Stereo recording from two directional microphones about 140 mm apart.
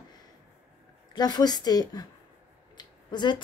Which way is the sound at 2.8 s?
30° left (ahead or behind).